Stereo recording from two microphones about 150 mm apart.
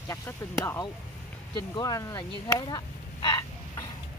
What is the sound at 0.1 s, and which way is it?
Speech, 15° left (ahead or behind).